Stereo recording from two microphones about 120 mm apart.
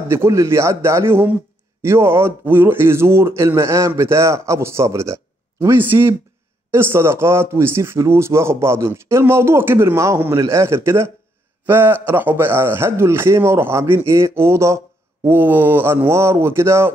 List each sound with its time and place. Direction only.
0.1 s speech: 25° right (ahead or behind)